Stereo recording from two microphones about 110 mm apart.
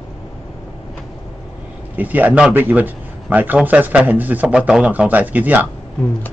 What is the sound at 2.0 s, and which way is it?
A man's voice, 15° right (ahead or behind).